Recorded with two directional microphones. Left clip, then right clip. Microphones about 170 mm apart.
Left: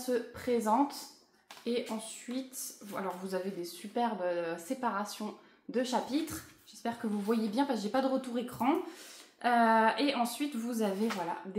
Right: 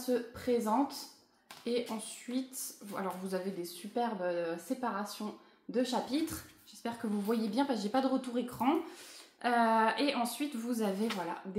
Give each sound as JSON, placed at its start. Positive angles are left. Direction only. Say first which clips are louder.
{"t": 0.1, "sound": "speech", "louder": "even", "side_deg": -5}